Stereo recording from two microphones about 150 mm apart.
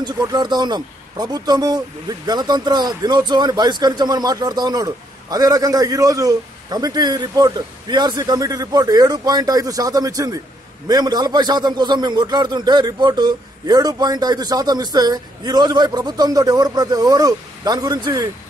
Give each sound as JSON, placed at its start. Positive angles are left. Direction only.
{"t": 0.0, "sound": "speech", "side_deg": -30}